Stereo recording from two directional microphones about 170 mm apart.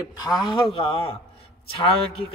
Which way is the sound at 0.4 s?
30° left (ahead or behind).